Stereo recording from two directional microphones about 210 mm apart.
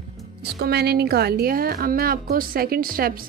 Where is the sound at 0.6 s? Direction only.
50° right (ahead or behind).